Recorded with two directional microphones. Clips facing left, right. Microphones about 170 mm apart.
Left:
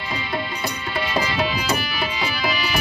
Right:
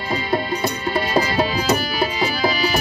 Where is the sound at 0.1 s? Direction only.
40° right (ahead or behind).